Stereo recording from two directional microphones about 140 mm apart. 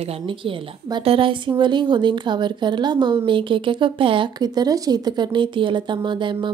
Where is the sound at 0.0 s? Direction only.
40° right (ahead or behind).